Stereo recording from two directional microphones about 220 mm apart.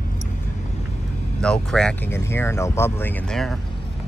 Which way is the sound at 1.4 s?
5° left (ahead or behind).